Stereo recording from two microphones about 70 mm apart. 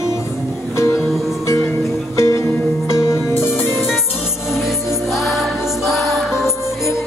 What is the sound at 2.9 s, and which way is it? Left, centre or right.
Music, left.